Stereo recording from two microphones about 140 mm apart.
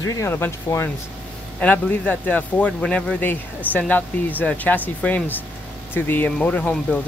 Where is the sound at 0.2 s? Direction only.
20° left (ahead or behind).